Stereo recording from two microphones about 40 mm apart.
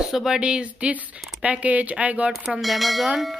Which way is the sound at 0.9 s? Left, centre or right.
Right.